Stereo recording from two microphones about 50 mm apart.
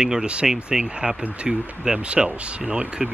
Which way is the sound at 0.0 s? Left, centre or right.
Centre.